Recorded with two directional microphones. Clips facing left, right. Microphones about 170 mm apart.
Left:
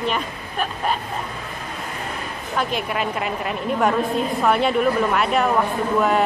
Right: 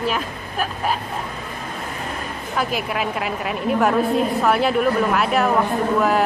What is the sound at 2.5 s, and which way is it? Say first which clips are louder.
A woman's voice: even; 5° right (ahead or behind).